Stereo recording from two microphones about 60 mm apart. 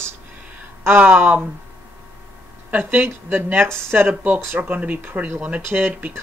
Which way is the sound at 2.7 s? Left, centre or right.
Right.